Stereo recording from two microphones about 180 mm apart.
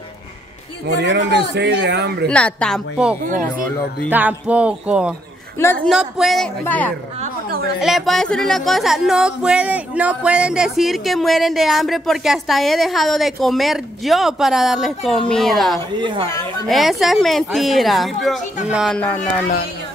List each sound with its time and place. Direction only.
0.8 s speech: 70° right (ahead or behind)
2.2 s speech: 5° left (ahead or behind)
3.3 s speech: 50° right (ahead or behind)
4.1 s music: 10° right (ahead or behind)
5.9 s a woman's voice: centre (ahead or behind)
7.8 s speech: centre (ahead or behind)
16.0 s speech: 25° right (ahead or behind)
16.6 s speech: centre (ahead or behind)